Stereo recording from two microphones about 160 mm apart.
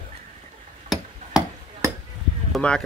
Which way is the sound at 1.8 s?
20° right (ahead or behind).